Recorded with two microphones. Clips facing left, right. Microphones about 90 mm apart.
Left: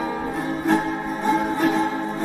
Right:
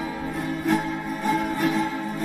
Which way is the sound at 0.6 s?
30° left (ahead or behind).